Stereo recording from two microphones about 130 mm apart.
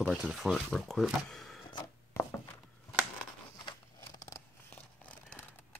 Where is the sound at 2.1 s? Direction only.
20° left (ahead or behind).